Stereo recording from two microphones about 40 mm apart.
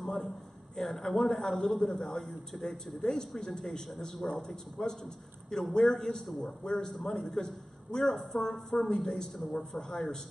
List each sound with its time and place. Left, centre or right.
0.7 s a man's voice: centre
1.8 s a man's voice: centre
3.0 s a man's voice: centre